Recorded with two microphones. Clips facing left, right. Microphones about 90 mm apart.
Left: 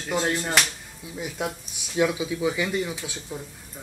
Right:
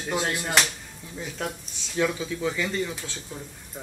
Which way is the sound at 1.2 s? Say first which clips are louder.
Left 2 dB; 10° left (ahead or behind).